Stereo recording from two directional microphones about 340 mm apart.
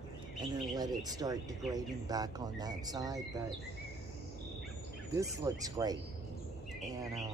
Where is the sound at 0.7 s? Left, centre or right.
Centre.